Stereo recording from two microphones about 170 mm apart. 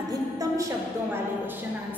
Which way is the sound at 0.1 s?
20° right (ahead or behind).